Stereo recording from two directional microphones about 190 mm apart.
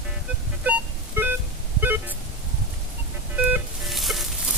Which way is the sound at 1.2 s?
10° right (ahead or behind).